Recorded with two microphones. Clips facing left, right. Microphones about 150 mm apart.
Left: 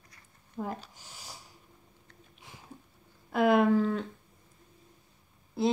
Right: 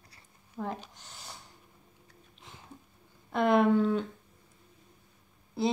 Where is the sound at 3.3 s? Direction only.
5° left (ahead or behind).